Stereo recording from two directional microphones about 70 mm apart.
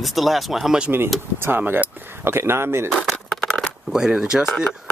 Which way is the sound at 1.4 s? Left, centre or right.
Right.